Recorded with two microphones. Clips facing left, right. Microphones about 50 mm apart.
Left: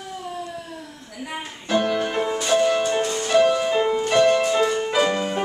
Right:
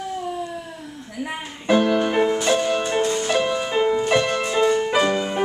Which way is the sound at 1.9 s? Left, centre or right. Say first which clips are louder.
Right 4 dB; centre.